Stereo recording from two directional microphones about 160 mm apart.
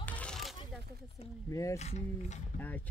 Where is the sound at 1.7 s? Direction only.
45° left (ahead or behind).